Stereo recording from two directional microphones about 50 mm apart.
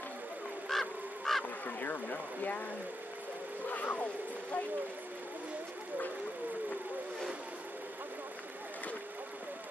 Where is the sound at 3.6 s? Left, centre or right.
Left.